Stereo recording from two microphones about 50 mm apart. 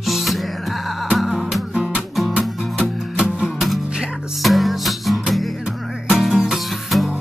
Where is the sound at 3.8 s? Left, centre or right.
Centre.